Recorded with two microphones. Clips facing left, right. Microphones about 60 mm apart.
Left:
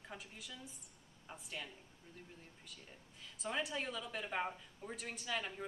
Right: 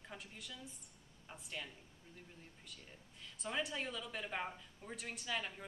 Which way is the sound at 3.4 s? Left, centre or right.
Centre.